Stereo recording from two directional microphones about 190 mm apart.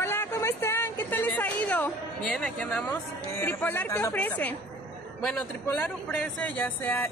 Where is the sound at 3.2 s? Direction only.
10° left (ahead or behind).